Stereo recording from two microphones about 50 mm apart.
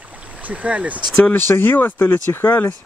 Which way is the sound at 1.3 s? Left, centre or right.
Left.